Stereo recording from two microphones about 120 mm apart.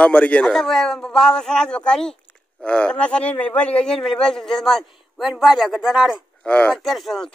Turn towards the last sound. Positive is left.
turn(degrees=0)  # may be behind; listen again after turning